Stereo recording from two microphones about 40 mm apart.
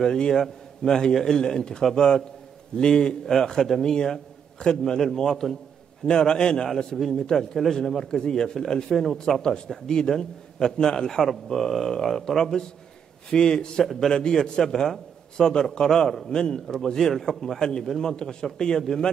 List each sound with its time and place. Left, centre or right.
0.0 s a man's voice: centre